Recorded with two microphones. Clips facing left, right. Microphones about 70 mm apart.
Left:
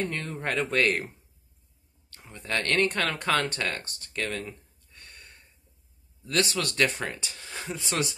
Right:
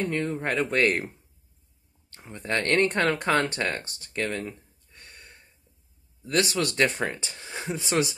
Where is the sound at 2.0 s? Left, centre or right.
Right.